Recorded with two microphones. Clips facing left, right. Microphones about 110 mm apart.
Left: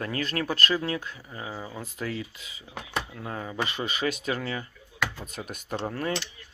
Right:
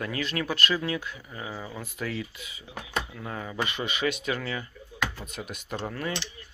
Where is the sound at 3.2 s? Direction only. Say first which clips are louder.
Left 1 dB; 20° left (ahead or behind).